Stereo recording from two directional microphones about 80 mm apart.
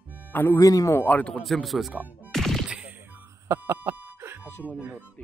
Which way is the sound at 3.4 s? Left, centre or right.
Right.